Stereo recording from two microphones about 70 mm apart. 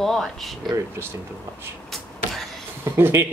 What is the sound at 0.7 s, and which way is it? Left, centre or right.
Speech, right.